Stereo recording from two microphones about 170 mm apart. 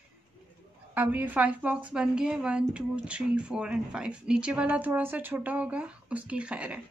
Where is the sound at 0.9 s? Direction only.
10° right (ahead or behind).